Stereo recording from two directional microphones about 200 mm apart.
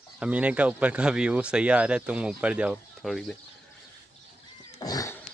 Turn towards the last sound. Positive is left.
turn(degrees=15)  # may be behind; listen again after turning